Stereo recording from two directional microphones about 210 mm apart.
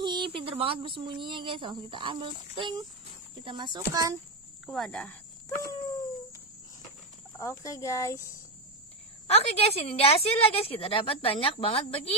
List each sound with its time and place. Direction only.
0.0 s speech: 20° right (ahead or behind)
4.6 s speech: centre (ahead or behind)
7.3 s speech: 15° left (ahead or behind)
9.3 s a woman's voice: 30° left (ahead or behind)